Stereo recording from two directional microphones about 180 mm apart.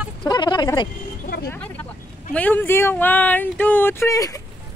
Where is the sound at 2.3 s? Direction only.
10° left (ahead or behind).